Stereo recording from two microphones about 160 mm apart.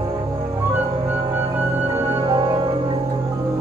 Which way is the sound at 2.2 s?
30° right (ahead or behind).